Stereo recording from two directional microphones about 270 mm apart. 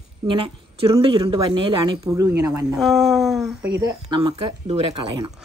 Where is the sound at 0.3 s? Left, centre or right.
Centre.